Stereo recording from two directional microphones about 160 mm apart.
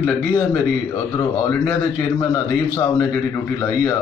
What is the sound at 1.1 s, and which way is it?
A man's voice, 15° left (ahead or behind).